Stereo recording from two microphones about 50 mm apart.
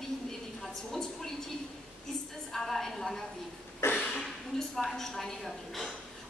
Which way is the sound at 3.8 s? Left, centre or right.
Left.